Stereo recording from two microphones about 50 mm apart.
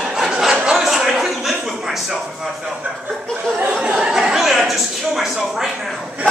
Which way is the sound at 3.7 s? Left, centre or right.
Right.